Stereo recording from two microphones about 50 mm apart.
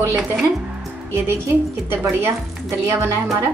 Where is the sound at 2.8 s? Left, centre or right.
Right.